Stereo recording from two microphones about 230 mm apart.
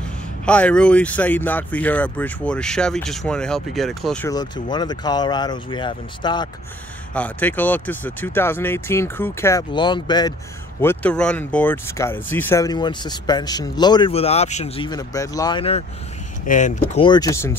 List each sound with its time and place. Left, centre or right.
0.5 s speech: centre
4.3 s speech: centre
7.2 s speech: centre
10.8 s speech: centre; by 14.9 s left
14.9 s speech: centre